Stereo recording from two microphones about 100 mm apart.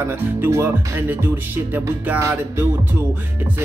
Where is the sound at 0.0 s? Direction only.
25° right (ahead or behind).